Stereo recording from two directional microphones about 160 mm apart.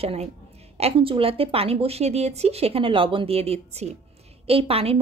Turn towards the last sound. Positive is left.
turn(degrees=-35)  # may be behind; listen again after turning